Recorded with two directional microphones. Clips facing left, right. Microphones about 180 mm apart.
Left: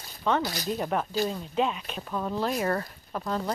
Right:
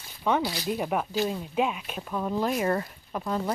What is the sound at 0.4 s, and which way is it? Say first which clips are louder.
Speech: right 1 dB; 45° left (ahead or behind).